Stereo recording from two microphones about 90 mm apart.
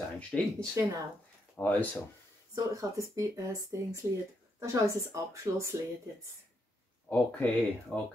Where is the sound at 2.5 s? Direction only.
35° right (ahead or behind).